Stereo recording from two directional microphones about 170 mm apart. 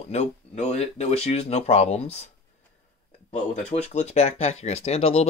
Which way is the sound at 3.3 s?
45° left (ahead or behind).